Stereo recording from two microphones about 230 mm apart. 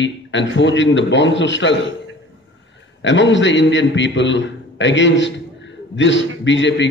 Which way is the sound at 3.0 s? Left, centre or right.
Left.